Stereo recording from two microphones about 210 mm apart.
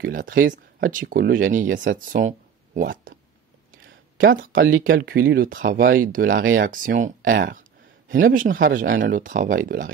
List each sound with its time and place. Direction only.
0.0 s speech: 40° right (ahead or behind)
4.4 s speech: 40° right (ahead or behind)